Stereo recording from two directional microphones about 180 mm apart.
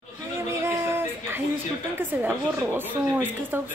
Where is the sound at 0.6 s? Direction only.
15° right (ahead or behind).